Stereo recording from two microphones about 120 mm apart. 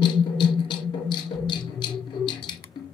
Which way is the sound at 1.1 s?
40° left (ahead or behind).